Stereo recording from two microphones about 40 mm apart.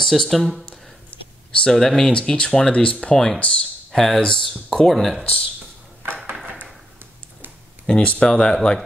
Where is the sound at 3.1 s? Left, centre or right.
Centre.